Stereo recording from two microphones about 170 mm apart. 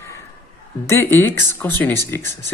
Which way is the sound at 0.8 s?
15° left (ahead or behind).